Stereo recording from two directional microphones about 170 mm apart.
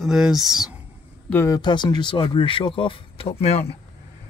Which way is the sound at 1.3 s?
20° left (ahead or behind).